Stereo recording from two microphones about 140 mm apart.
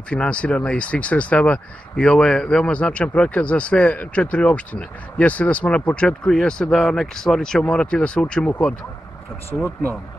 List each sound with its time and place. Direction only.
0.1 s speech: 10° left (ahead or behind)